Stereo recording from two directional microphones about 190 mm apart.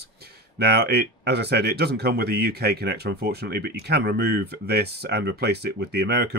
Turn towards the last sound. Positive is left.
turn(degrees=-60)  # may be behind; listen again after turning